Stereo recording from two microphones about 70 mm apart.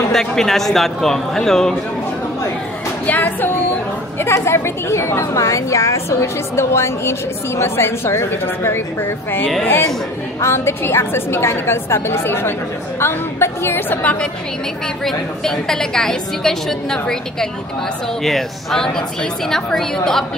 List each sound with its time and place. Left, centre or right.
0.1 s a man's voice: centre
3.1 s a woman's voice: left
5.2 s a woman's voice: left
15.0 s a woman's voice: centre